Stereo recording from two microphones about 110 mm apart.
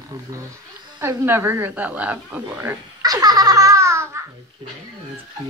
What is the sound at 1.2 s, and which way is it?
A woman's voice, 20° right (ahead or behind).